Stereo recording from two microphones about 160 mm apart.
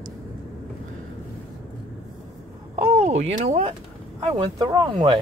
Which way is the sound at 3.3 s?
40° right (ahead or behind).